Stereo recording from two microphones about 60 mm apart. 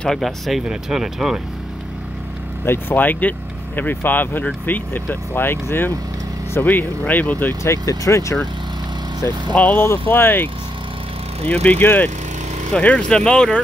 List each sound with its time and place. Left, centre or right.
0.0 s speech: centre
2.6 s speech: left
7.6 s speech: left
9.2 s speech: left
9.6 s speech: left
11.5 s speech: left
12.7 s speech: centre